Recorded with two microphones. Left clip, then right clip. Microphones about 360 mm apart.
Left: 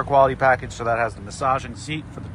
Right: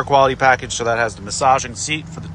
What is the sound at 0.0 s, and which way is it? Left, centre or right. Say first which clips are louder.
Speech: right 3 dB; centre.